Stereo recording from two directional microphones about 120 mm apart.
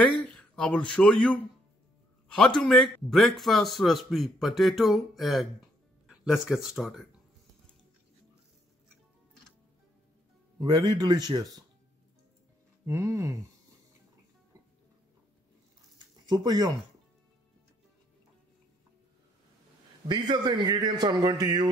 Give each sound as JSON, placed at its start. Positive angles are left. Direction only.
{"t": 0.0, "sound": "a sound", "side_deg": 10}
{"t": 0.3, "sound": "speech", "side_deg": 5}
{"t": 2.6, "sound": "a man's voice", "side_deg": 5}
{"t": 10.6, "sound": "a man's voice", "side_deg": -35}
{"t": 12.8, "sound": "speech", "side_deg": -25}
{"t": 16.3, "sound": "a man's voice", "side_deg": -35}
{"t": 20.1, "sound": "a man's voice", "side_deg": -35}